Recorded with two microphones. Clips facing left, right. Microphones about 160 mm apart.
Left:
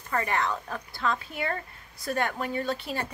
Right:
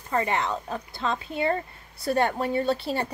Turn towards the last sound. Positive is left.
turn(degrees=-30)  # may be behind; listen again after turning